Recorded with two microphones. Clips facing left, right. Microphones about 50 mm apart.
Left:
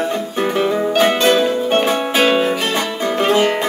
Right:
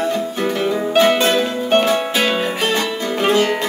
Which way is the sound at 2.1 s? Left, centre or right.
Left.